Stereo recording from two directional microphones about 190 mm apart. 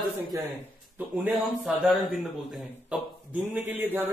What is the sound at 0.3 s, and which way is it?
Speech, 15° right (ahead or behind).